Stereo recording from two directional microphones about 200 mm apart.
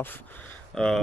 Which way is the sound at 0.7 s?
5° left (ahead or behind).